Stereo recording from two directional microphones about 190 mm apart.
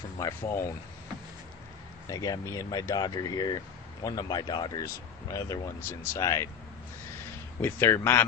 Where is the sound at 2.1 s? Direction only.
20° left (ahead or behind).